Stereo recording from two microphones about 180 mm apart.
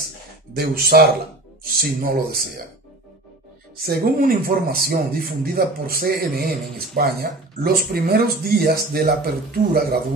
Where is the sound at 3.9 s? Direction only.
55° right (ahead or behind).